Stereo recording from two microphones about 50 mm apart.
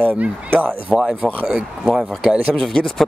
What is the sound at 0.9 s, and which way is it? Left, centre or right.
Speech, right.